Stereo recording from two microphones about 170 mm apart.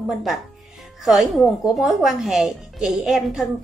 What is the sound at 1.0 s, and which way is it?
A woman's voice, centre (ahead or behind).